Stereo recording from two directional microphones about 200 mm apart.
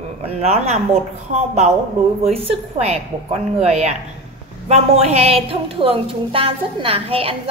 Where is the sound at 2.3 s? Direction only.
30° right (ahead or behind).